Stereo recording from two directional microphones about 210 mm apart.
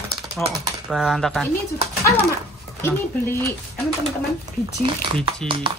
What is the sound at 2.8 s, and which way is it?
Speech, 10° left (ahead or behind).